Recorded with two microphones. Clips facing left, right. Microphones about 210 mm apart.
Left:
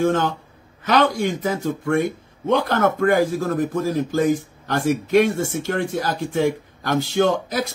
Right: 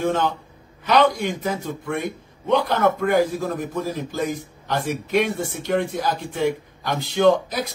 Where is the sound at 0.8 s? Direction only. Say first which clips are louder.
Even; 50° left (ahead or behind).